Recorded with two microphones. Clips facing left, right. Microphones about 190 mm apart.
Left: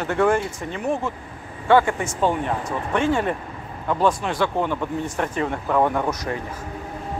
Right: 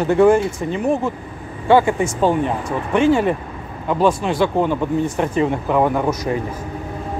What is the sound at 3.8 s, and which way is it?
Speech, 10° right (ahead or behind).